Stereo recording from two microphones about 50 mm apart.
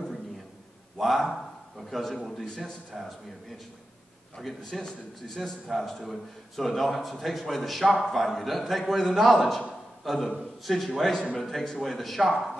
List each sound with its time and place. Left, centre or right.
0.9 s a man's voice: centre
4.8 s a man's voice: centre
9.7 s a sound: centre
10.4 s a man's voice: centre